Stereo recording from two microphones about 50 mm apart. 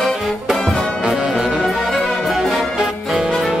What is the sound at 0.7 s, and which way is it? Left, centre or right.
Brass instrument, centre.